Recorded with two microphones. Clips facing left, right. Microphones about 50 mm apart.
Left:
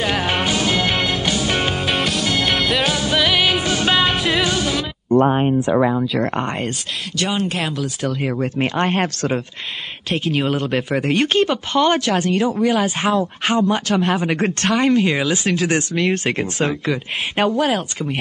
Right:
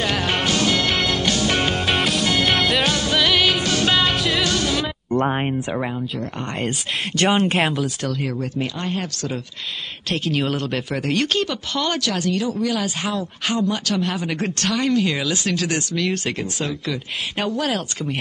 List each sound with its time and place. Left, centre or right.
0.0 s music: centre
7.2 s speech: right
8.4 s speech: left
10.0 s speech: centre
17.6 s speech: centre